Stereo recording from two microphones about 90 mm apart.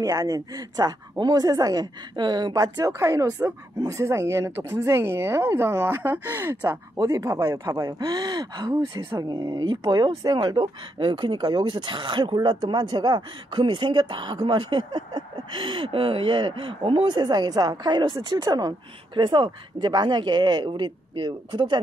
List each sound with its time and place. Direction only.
0.0 s a woman's voice: 35° right (ahead or behind)
0.7 s a woman's voice: 50° right (ahead or behind); by 6.8 s 25° right (ahead or behind)
7.0 s a woman's voice: 40° right (ahead or behind)
9.7 s speech: 65° right (ahead or behind)
10.2 s speech: 55° right (ahead or behind)